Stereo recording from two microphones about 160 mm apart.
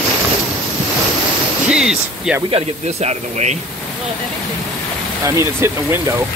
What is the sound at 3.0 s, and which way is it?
Speech, 45° right (ahead or behind).